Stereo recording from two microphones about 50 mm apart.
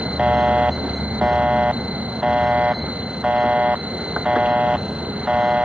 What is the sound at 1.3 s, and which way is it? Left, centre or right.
Buzzer, right.